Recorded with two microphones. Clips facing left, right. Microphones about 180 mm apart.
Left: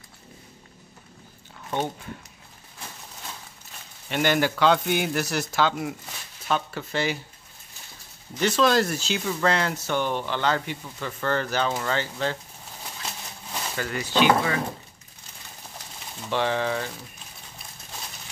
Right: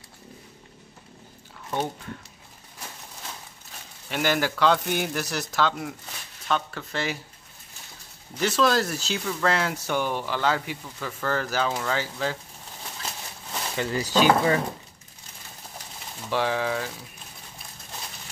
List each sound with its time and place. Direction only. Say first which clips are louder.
4.1 s speech: left 2 dB; centre (ahead or behind)
8.4 s speech: left 2 dB; 5° right (ahead or behind)
13.7 s speech: right 1 dB; 30° right (ahead or behind)
16.3 s speech: even; 5° right (ahead or behind)